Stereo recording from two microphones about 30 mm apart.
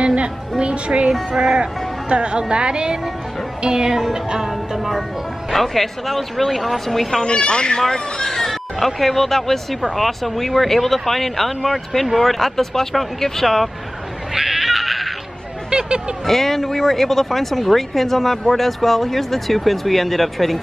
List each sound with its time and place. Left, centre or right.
0.0 s music: right
0.6 s speech: right
1.4 s speech: right
2.0 s speech: right
4.5 s speech: centre
7.2 s speech: left
7.9 s speech: centre
14.3 s a sound: centre
15.7 s a sound: right
16.3 s speech: centre